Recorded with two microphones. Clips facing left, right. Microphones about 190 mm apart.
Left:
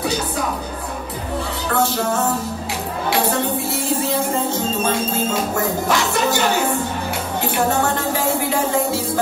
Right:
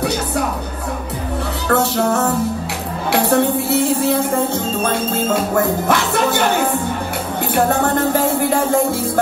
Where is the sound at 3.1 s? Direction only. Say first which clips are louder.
Right 5 dB; 65° right (ahead or behind).